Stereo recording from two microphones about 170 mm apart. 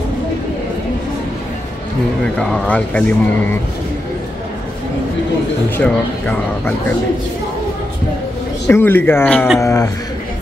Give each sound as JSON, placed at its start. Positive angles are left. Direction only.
{"t": 2.3, "sound": "speech", "side_deg": 5}
{"t": 5.8, "sound": "speech", "side_deg": 10}
{"t": 8.6, "sound": "speech", "side_deg": 15}